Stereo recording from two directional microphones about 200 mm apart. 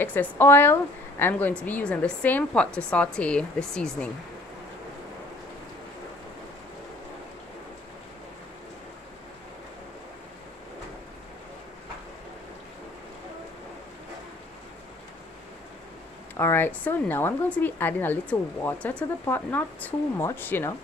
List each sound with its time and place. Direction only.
0.0 s speech: 10° left (ahead or behind)
16.3 s speech: 10° left (ahead or behind)